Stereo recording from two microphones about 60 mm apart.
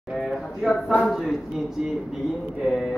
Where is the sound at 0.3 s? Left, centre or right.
Centre.